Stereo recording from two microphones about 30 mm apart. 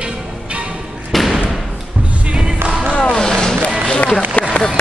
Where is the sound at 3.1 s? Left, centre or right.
Left.